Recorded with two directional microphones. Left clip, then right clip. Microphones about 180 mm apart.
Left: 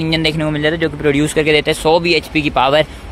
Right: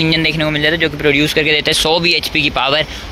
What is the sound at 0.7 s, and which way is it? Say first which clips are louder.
Speech: right 1 dB; 25° left (ahead or behind).